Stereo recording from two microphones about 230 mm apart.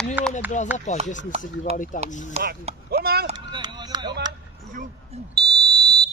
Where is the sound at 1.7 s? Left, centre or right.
Right.